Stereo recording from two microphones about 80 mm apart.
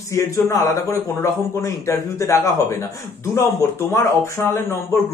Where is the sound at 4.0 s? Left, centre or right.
Left.